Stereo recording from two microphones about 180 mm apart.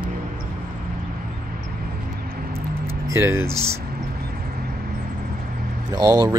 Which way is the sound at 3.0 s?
15° right (ahead or behind).